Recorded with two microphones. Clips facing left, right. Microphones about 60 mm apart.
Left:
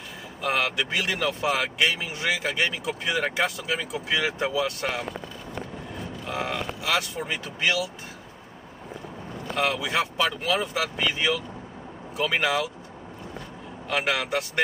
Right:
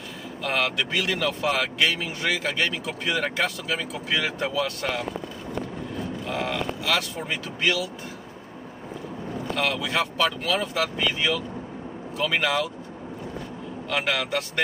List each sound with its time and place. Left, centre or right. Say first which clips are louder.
0.4 s speech: even; centre
6.2 s speech: right 1 dB; centre
9.6 s speech: left 1 dB; centre
13.8 s speech: even; centre